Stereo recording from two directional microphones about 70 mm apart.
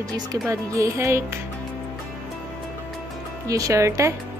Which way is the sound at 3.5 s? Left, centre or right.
Right.